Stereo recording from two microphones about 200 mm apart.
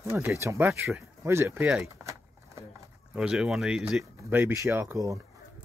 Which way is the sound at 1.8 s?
15° right (ahead or behind).